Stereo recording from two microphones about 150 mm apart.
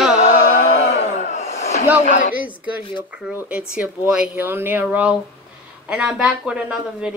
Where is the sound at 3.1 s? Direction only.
10° right (ahead or behind).